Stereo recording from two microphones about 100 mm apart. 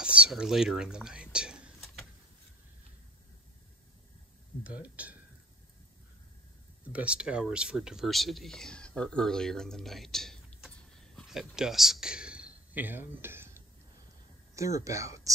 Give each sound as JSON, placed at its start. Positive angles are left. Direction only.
{"t": 0.0, "sound": "a sound", "side_deg": -10}
{"t": 0.3, "sound": "speech", "side_deg": -5}
{"t": 4.6, "sound": "speech", "side_deg": -15}
{"t": 6.8, "sound": "speech", "side_deg": -15}
{"t": 11.2, "sound": "a sound", "side_deg": -5}
{"t": 14.5, "sound": "speech", "side_deg": -30}